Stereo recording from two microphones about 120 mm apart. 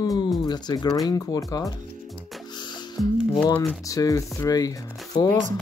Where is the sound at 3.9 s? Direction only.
30° left (ahead or behind).